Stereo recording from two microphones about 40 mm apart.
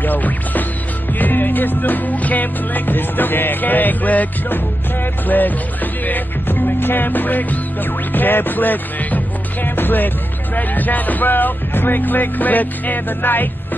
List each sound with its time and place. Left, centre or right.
0.0 s music: left
6.0 s music: left